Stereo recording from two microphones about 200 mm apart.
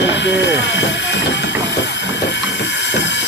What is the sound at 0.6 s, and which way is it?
Vehicle, 65° left (ahead or behind).